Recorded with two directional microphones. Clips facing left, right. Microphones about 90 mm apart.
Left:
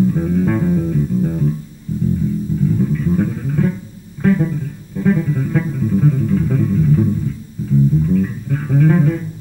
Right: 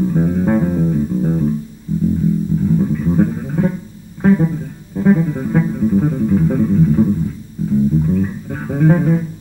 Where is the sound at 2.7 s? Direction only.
20° right (ahead or behind).